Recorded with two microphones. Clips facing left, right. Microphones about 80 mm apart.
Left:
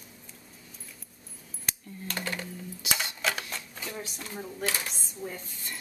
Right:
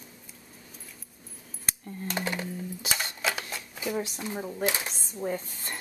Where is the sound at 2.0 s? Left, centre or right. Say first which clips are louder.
Right 3 dB; centre.